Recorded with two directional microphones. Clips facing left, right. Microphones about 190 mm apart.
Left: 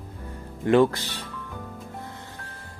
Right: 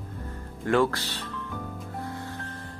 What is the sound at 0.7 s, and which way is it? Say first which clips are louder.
Speech: left 4 dB; 20° left (ahead or behind).